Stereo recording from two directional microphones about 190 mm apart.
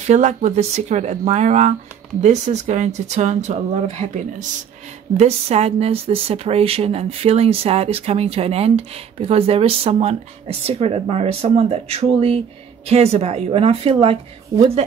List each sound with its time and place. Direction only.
0.0 s speech: 35° right (ahead or behind)